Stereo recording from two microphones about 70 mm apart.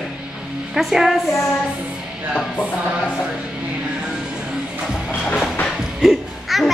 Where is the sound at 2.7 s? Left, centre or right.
Left.